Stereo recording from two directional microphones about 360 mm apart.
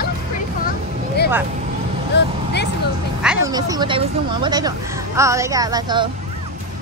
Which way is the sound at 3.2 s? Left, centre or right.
Centre.